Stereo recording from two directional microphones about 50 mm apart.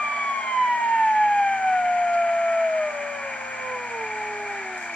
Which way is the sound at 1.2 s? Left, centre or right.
Centre.